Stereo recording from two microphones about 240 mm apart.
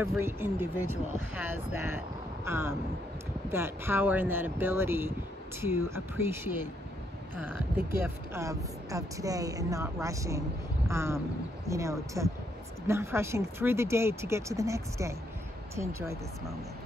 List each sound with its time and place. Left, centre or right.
0.1 s speech: centre
0.8 s speech: left
1.9 s speech: centre
8.3 s speech: centre